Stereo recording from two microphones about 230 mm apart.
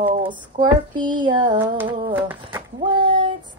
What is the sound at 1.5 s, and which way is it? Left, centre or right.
Speech, centre.